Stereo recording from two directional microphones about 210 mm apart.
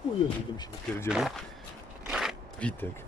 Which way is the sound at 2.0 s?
Centre (ahead or behind).